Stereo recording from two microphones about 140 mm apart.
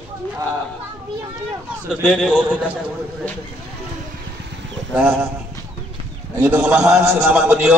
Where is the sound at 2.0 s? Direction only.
10° left (ahead or behind).